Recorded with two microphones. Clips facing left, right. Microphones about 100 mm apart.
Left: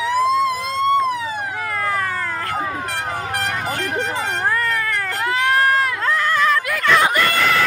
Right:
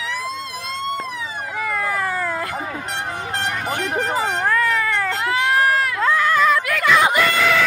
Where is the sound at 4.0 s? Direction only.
5° right (ahead or behind).